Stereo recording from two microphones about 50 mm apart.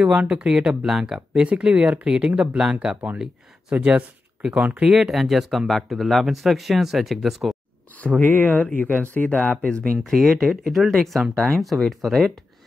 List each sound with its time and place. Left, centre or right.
0.3 s speech: centre
5.1 s speech: centre
8.0 s speech: left
10.0 s speech: centre